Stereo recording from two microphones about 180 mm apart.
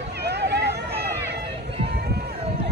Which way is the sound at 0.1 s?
65° right (ahead or behind).